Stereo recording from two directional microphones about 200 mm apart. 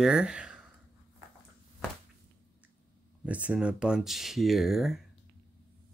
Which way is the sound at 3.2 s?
5° right (ahead or behind).